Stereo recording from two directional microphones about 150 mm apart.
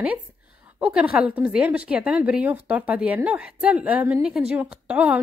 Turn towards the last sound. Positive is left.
turn(degrees=-5)  # may be behind; listen again after turning